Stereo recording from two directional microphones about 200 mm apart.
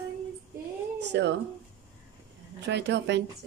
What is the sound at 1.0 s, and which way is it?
Speech, 60° right (ahead or behind).